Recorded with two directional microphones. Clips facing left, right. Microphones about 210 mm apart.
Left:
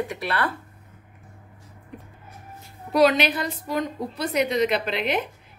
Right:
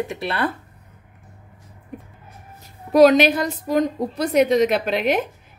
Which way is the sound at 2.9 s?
45° right (ahead or behind).